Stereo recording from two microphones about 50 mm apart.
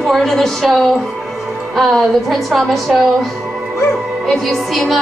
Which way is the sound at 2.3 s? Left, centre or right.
Centre.